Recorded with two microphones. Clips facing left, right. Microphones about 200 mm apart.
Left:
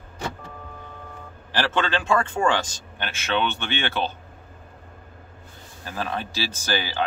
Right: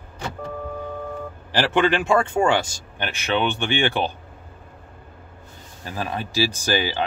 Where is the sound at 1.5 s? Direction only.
15° right (ahead or behind).